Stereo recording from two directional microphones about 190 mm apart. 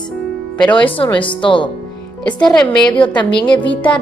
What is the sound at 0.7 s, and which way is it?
Speech, 25° left (ahead or behind).